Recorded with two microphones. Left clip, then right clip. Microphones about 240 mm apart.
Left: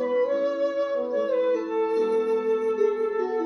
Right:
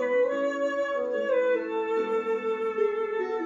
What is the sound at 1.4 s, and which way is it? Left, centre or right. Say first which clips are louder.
Music: left 2 dB; left.